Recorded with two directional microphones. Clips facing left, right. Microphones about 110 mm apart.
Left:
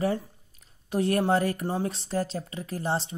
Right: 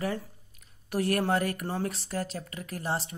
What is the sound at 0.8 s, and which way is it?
Speech, 25° left (ahead or behind).